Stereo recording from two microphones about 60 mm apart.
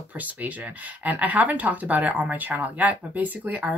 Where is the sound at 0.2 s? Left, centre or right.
Right.